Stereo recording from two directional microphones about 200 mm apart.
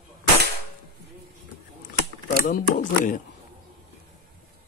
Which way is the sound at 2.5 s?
45° left (ahead or behind).